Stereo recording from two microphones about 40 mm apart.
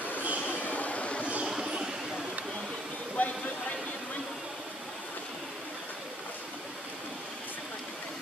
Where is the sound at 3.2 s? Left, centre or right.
Left.